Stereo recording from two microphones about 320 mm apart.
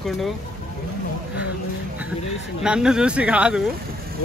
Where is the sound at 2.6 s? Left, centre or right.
Centre.